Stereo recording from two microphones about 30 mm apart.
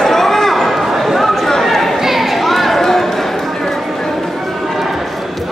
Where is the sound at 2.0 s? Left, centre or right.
Centre.